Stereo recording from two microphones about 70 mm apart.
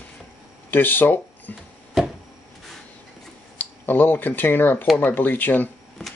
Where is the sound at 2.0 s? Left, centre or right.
Centre.